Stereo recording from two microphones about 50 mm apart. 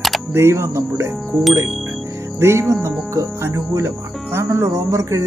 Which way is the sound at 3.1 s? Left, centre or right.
Right.